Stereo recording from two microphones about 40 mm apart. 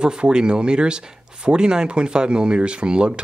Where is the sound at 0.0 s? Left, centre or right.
Right.